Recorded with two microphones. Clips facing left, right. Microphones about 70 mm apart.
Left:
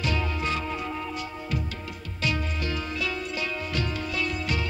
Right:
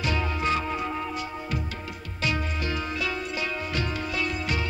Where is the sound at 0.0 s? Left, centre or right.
Centre.